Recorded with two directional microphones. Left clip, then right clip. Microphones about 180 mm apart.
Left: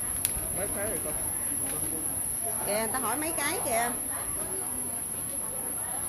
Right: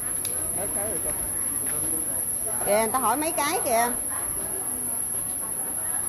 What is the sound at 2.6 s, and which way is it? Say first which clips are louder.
Speech: right 9 dB; 30° right (ahead or behind).